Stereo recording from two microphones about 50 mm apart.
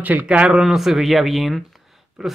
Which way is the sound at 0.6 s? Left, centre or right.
Centre.